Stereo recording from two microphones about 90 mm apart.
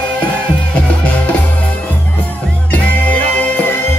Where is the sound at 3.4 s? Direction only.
20° left (ahead or behind).